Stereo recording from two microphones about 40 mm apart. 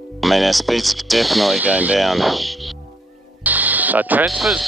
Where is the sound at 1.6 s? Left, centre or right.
Right.